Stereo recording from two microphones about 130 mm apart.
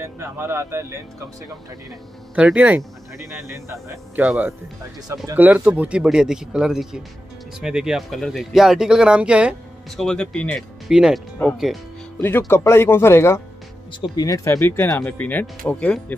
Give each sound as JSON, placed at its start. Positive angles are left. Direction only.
{"t": 0.0, "sound": "speech", "side_deg": -20}
{"t": 2.3, "sound": "speech", "side_deg": -10}
{"t": 5.0, "sound": "speech", "side_deg": -30}
{"t": 5.3, "sound": "speech", "side_deg": -15}
{"t": 9.9, "sound": "speech", "side_deg": 5}
{"t": 10.9, "sound": "speech", "side_deg": -5}
{"t": 12.2, "sound": "speech", "side_deg": 15}